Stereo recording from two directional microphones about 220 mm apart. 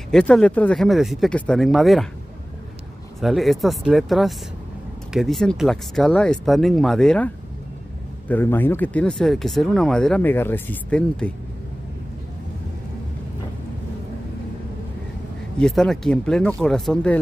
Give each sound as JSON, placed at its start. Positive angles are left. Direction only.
{"t": 0.1, "sound": "speech", "side_deg": 5}
{"t": 3.2, "sound": "speech", "side_deg": 0}
{"t": 8.3, "sound": "speech", "side_deg": 10}
{"t": 15.6, "sound": "speech", "side_deg": 0}